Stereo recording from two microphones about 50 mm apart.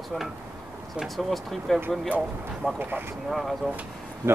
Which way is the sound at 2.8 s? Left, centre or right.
Right.